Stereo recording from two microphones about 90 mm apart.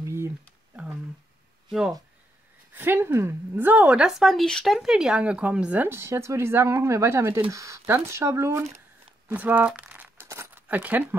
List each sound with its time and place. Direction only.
0.0 s a sound: 30° right (ahead or behind)
1.7 s speech: 5° right (ahead or behind)
2.7 s a woman's voice: 25° right (ahead or behind); by 4.7 s 5° left (ahead or behind)
4.7 s speech: 5° right (ahead or behind); by 8.6 s 30° right (ahead or behind)
9.3 s a woman's voice: 20° right (ahead or behind)
9.8 s crumpling: 15° right (ahead or behind)
10.7 s speech: 20° right (ahead or behind)